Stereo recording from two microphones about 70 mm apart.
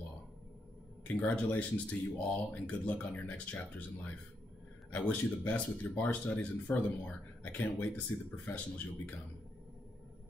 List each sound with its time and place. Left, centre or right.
1.0 s speech: left